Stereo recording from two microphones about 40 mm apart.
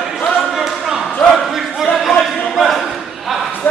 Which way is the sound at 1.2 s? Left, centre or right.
Centre.